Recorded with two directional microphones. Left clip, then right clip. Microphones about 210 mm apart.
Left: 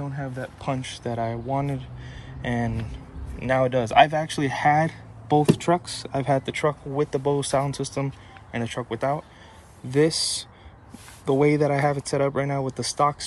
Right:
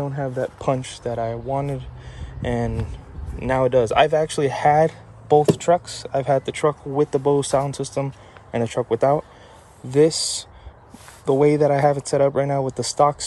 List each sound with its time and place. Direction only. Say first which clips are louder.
0.1 s speech: right 8 dB; 35° right (ahead or behind)
1.0 s speech: right 2 dB; 20° right (ahead or behind)